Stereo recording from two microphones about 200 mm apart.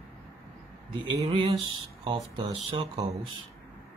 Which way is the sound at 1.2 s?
30° right (ahead or behind).